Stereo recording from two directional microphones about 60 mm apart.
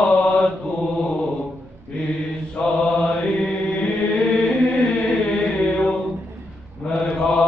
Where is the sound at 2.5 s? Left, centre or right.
Centre.